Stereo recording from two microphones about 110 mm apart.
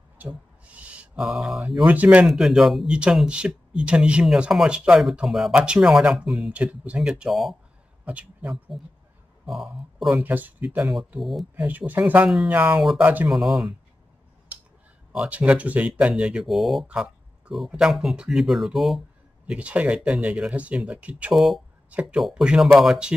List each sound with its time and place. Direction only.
0.2 s a sound: 15° right (ahead or behind)
1.2 s speech: centre (ahead or behind)
2.2 s speech: 5° right (ahead or behind)
8.0 s speech: 10° right (ahead or behind)
9.5 s speech: centre (ahead or behind)
10.1 s speech: 15° right (ahead or behind)
11.1 s speech: centre (ahead or behind)
11.5 s speech: 15° right (ahead or behind)
12.7 s speech: 5° right (ahead or behind)
13.0 s speech: 15° right (ahead or behind)
13.3 s speech: centre (ahead or behind)
15.1 s speech: 10° right (ahead or behind)